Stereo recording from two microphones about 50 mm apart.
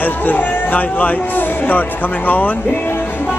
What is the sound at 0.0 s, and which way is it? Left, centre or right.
Speech, left.